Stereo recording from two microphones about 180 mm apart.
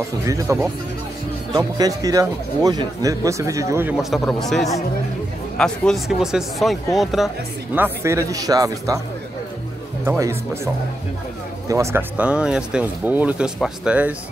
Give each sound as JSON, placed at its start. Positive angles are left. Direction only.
{"t": 0.3, "sound": "speech", "side_deg": -20}
{"t": 7.7, "sound": "speech", "side_deg": -15}
{"t": 10.0, "sound": "speech", "side_deg": -15}